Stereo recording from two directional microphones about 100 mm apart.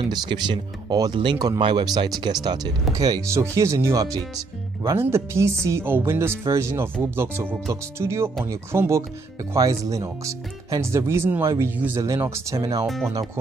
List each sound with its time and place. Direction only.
0.1 s speech: 50° right (ahead or behind)
1.1 s speech: 55° right (ahead or behind); by 12.6 s 30° right (ahead or behind)
12.8 s speech: centre (ahead or behind)